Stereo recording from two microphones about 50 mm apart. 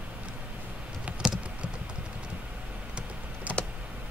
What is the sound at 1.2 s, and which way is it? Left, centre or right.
Typing, centre.